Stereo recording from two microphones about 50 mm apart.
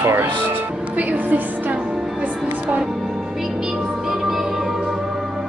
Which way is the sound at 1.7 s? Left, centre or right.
Right.